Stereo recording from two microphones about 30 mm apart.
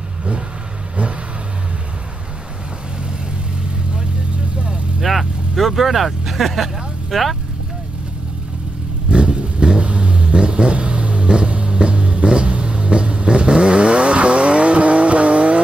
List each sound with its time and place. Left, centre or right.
5.5 s speech: centre
9.1 s vehicle: right